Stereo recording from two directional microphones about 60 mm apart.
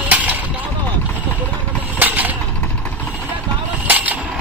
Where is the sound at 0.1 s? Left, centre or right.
Right.